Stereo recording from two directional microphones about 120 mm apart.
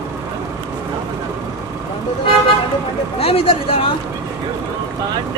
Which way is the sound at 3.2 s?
50° left (ahead or behind).